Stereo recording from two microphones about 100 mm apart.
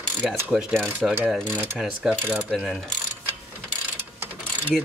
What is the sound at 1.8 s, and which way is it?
Speech, 10° right (ahead or behind).